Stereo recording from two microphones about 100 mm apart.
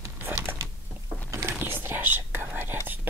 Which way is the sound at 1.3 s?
25° right (ahead or behind).